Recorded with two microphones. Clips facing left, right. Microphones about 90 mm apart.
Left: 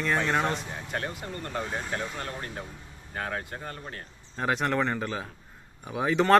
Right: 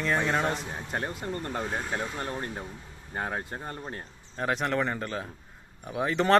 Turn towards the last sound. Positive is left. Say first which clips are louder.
# left 2 dB
turn(degrees=0)  # may be behind; listen again after turning